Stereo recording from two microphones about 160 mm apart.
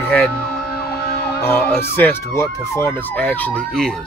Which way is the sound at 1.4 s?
15° left (ahead or behind).